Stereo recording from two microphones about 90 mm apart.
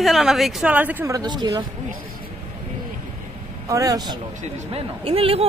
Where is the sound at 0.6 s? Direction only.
20° right (ahead or behind).